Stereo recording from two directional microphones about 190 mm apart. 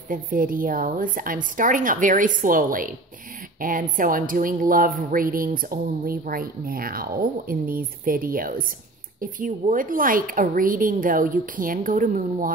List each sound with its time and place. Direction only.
0.1 s speech: 45° right (ahead or behind)